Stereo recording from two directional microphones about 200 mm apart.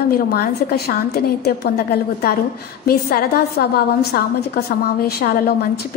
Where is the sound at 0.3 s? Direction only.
50° left (ahead or behind).